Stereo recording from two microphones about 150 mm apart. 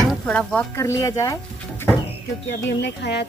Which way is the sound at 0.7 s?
20° left (ahead or behind).